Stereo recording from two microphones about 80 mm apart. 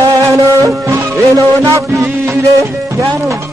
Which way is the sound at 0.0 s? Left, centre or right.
Right.